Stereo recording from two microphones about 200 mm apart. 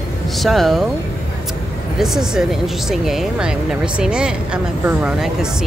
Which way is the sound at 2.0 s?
Centre (ahead or behind).